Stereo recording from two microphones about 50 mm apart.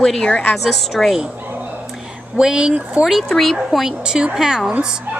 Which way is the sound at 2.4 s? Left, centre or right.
Centre.